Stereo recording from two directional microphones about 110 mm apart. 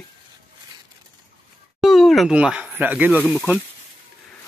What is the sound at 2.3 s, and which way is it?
Speech, 10° right (ahead or behind).